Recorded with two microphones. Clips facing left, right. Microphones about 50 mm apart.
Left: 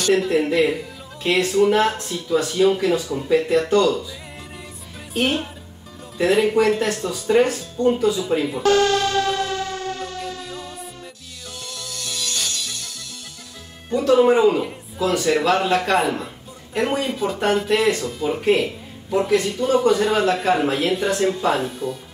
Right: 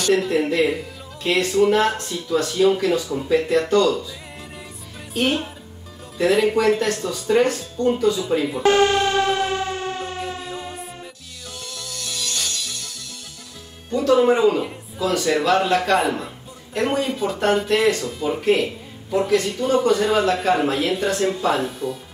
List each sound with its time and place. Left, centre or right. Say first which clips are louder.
0.0 s speech: left 1 dB; centre
5.1 s speech: even; centre
8.6 s music: right 1 dB; right
13.8 s speech: left 1 dB; centre